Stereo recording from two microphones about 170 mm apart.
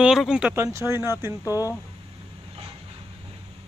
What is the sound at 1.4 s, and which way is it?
Speech, 20° left (ahead or behind).